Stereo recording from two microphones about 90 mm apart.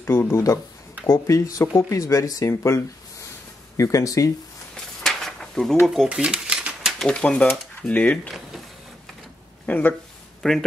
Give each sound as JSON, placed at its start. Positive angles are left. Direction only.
{"t": 0.0, "sound": "speech", "side_deg": 30}
{"t": 4.7, "sound": "a sound", "side_deg": 5}
{"t": 6.0, "sound": "typewriter", "side_deg": -10}
{"t": 7.0, "sound": "speech", "side_deg": 10}
{"t": 9.7, "sound": "speech", "side_deg": 15}
{"t": 10.4, "sound": "speech", "side_deg": 5}